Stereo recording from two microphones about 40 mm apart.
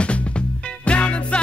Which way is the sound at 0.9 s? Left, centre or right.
Left.